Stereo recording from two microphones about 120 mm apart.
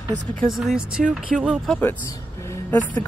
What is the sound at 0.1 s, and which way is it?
Speech, 80° right.